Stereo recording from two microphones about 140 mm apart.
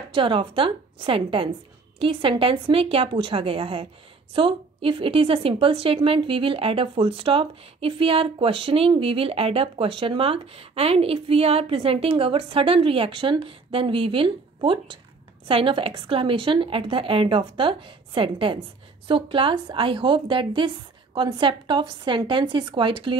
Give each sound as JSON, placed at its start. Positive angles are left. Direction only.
{"t": 0.1, "sound": "a woman's voice", "side_deg": -40}